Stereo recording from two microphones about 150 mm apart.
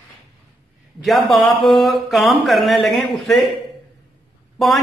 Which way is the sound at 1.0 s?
Centre (ahead or behind).